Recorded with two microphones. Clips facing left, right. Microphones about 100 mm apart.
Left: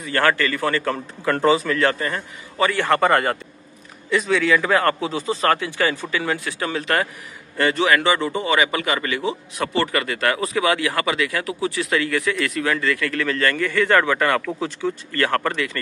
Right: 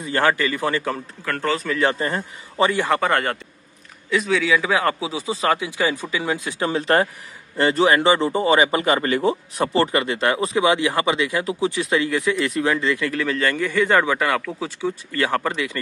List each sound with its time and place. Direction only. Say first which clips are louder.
0.0 s speech: even; 15° right (ahead or behind)
1.2 s speech: left 6 dB; 15° left (ahead or behind)
1.8 s a man's voice: even; 25° right (ahead or behind)
2.9 s a man's voice: left 3 dB; centre (ahead or behind); by 15.8 s 15° right (ahead or behind)